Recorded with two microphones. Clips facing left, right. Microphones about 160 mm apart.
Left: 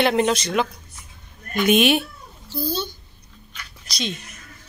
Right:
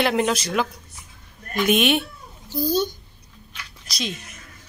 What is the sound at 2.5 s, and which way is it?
Speech, 15° right (ahead or behind).